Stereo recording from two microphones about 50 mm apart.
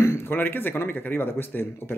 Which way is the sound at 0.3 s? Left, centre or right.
Left.